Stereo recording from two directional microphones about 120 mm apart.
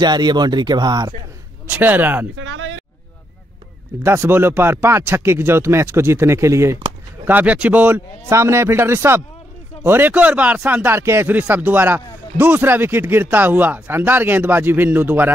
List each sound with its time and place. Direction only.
0.0 s speech: 35° right (ahead or behind)
1.7 s speech: 15° right (ahead or behind)
4.0 s speech: 20° right (ahead or behind)
7.2 s speech: 15° right (ahead or behind)